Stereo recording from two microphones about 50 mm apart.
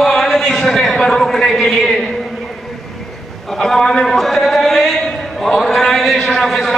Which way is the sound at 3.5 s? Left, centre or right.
Centre.